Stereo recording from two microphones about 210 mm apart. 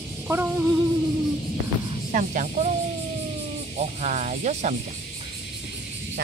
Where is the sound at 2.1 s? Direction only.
35° right (ahead or behind).